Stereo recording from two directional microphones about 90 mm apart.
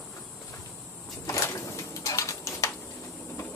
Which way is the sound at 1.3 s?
35° left (ahead or behind).